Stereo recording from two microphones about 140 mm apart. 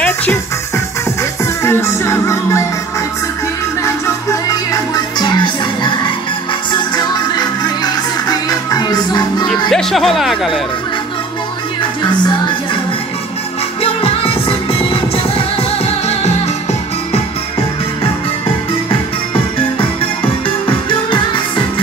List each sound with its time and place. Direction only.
0.0 s music: 10° left (ahead or behind)
1.4 s music: 20° left (ahead or behind)
3.8 s music: 25° left (ahead or behind)
9.7 s speech: centre (ahead or behind)
14.0 s music: 45° left (ahead or behind)